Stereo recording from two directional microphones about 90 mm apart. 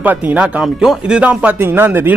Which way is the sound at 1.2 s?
15° right (ahead or behind).